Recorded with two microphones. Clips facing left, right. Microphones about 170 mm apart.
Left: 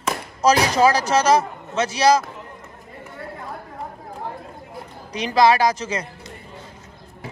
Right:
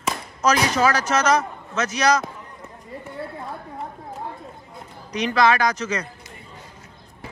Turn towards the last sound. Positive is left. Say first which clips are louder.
# left 2 dB
turn(degrees=30)  # may be behind; listen again after turning